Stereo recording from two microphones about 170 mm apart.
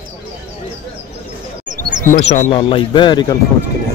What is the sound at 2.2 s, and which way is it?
Speech, 45° left (ahead or behind).